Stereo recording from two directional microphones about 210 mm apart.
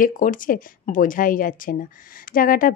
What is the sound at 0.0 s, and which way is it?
Speech, 40° left (ahead or behind).